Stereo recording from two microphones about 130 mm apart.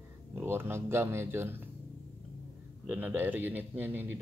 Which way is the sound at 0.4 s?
15° right (ahead or behind).